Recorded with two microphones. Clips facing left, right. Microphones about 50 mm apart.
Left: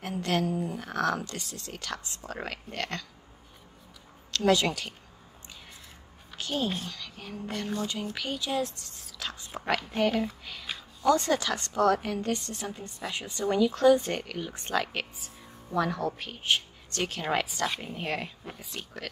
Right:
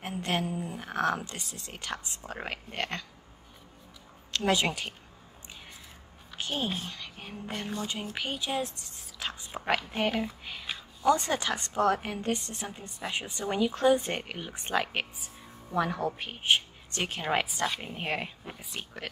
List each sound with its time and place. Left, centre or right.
0.0 s a woman's voice: right
4.3 s a woman's voice: right
6.3 s a sound: right
6.9 s a woman's voice: right
10.4 s a sound: right
11.1 s a woman's voice: right